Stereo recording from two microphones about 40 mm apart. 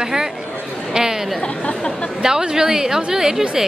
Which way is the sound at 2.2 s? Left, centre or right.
Centre.